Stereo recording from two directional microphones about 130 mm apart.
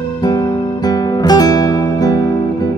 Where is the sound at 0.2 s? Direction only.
30° left (ahead or behind).